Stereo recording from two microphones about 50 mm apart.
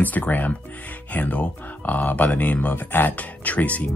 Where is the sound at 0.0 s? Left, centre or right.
Left.